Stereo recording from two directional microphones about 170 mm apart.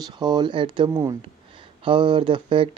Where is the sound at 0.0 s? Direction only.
25° right (ahead or behind).